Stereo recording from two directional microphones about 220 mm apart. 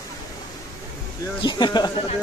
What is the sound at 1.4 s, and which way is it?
Speech, 20° left (ahead or behind).